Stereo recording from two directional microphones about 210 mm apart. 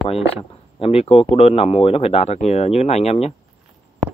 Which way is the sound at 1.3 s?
30° left (ahead or behind).